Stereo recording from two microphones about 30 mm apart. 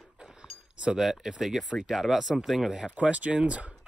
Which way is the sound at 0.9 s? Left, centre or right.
Centre.